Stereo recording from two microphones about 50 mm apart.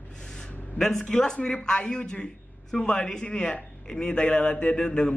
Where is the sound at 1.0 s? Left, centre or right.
Centre.